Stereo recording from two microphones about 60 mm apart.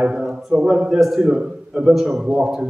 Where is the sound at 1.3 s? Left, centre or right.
Centre.